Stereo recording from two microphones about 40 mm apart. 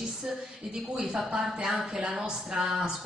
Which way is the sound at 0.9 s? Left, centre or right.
Right.